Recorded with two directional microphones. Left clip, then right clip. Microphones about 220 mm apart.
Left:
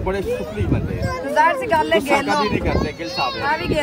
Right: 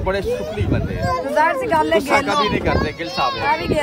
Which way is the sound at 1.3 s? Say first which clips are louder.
Left 1 dB; 45° right (ahead or behind).